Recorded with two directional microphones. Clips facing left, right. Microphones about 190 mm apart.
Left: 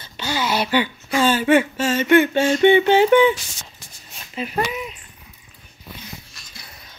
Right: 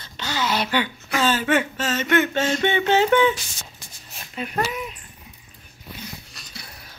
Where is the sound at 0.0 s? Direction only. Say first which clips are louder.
Left 2 dB; 10° left (ahead or behind).